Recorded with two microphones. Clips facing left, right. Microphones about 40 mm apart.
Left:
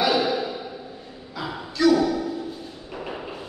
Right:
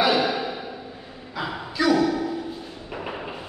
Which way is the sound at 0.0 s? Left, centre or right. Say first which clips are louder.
Right 1 dB; centre.